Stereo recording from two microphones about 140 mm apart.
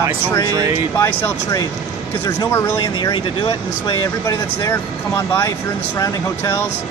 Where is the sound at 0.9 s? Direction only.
20° left (ahead or behind).